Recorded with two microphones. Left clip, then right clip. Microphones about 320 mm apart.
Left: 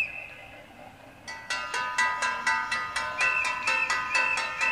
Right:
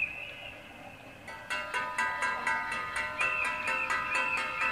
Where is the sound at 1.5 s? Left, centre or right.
Left.